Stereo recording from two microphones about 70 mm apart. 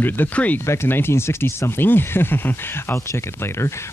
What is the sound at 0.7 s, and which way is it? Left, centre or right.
Speech, left.